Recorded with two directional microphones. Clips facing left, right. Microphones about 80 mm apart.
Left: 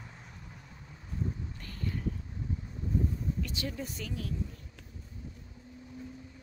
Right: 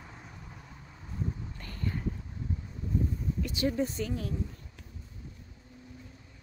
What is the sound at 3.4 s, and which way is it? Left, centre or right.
Speech, right.